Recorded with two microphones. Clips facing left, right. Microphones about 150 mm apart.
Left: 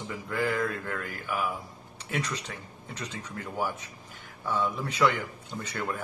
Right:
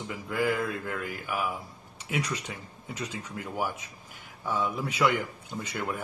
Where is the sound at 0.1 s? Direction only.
10° right (ahead or behind).